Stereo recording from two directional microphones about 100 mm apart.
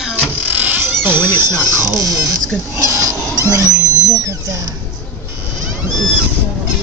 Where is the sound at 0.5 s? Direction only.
15° right (ahead or behind).